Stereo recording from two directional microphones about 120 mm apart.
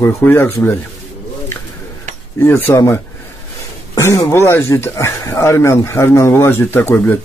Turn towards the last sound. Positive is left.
turn(degrees=15)  # may be behind; listen again after turning